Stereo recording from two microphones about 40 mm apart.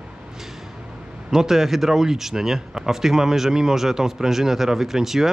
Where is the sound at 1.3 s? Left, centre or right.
Centre.